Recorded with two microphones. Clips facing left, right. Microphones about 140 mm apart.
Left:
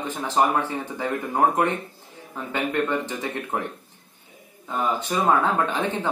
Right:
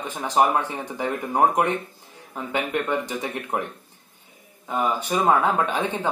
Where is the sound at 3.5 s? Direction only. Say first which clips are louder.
Right 1 dB; 15° right (ahead or behind).